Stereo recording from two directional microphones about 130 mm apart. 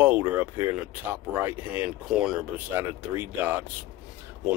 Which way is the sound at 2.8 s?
15° right (ahead or behind).